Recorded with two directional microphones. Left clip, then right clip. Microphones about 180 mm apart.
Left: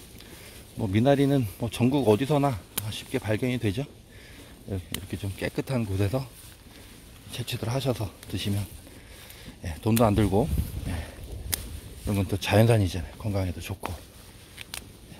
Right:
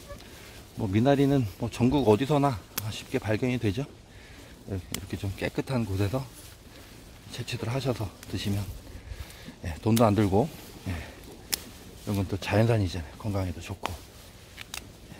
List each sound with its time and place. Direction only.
0.7 s speech: 5° left (ahead or behind)
7.2 s speech: 5° left (ahead or behind)
9.6 s speech: centre (ahead or behind)
12.1 s speech: 15° left (ahead or behind)
14.6 s a sound: 30° left (ahead or behind)